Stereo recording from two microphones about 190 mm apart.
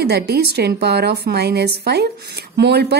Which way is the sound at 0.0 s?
60° right (ahead or behind).